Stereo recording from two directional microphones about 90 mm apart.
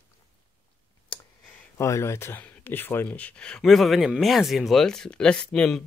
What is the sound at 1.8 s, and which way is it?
Speech, 30° left (ahead or behind).